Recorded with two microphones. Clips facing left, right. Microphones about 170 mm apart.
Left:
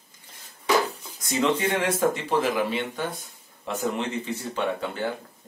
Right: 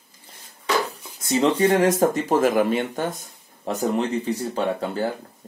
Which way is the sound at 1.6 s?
40° right (ahead or behind).